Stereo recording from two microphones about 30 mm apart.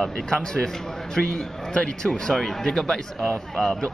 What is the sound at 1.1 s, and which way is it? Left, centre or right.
Speech, left.